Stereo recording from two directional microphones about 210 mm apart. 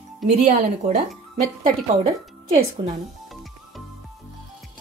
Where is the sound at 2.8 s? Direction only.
20° right (ahead or behind).